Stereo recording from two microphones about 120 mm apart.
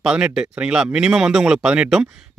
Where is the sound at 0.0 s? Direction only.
5° right (ahead or behind).